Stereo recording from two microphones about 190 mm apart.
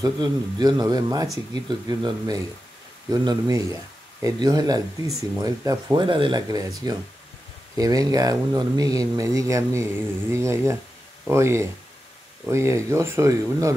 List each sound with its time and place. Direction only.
0.0 s speech: 20° right (ahead or behind)